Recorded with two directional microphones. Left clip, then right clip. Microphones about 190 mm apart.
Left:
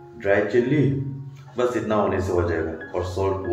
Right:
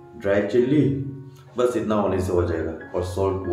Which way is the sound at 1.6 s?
20° right (ahead or behind).